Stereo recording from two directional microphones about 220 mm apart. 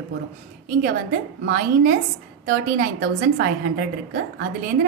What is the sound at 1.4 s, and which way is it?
A woman's voice, 40° right (ahead or behind).